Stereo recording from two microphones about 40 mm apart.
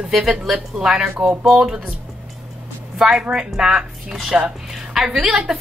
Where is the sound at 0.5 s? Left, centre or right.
Centre.